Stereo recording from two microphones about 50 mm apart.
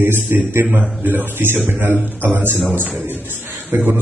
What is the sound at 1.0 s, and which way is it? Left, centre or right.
A man's voice, right.